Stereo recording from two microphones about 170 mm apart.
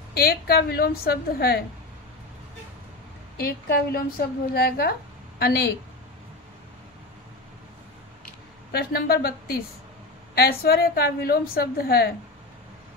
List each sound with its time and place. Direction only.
0.1 s a woman's voice: 65° left (ahead or behind)
3.3 s a woman's voice: 65° left (ahead or behind)
8.7 s a woman's voice: 65° left (ahead or behind)